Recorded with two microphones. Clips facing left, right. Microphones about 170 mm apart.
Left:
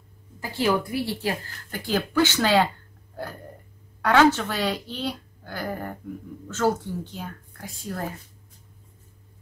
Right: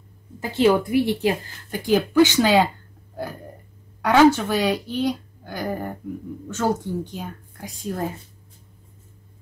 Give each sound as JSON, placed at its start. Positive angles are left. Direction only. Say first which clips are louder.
{"t": 0.4, "sound": "a woman's voice", "louder": "right 6 dB", "side_deg": -20}
{"t": 4.0, "sound": "speech", "louder": "right 3 dB", "side_deg": -15}